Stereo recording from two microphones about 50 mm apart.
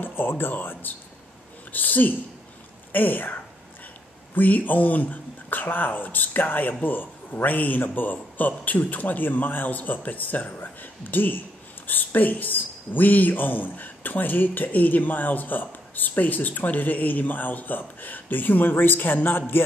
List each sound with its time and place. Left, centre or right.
0.0 s a man's voice: left